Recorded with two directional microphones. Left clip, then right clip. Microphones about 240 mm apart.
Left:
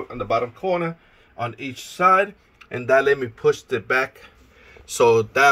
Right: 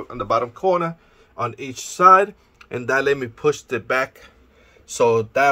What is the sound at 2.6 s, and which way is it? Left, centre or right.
Speech, centre.